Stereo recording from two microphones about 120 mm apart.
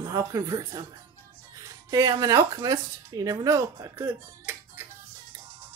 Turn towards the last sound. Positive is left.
turn(degrees=-20)  # may be behind; listen again after turning